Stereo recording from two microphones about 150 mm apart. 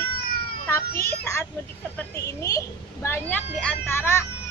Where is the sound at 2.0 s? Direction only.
20° left (ahead or behind).